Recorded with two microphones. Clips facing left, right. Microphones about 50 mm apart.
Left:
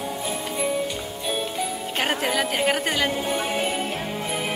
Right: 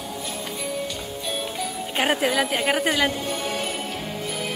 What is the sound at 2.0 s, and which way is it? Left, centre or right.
A woman's voice, centre.